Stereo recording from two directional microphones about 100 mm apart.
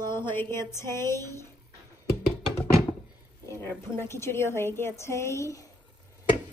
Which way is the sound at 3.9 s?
25° left (ahead or behind).